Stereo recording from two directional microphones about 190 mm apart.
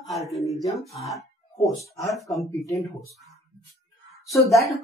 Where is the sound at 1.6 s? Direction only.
Centre (ahead or behind).